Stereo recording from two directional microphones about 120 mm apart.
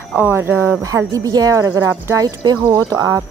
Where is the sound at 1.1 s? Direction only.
30° right (ahead or behind).